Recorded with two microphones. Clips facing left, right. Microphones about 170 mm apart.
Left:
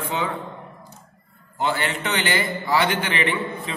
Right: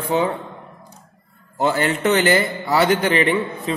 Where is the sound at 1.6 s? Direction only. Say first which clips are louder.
Right 6 dB; 45° right (ahead or behind).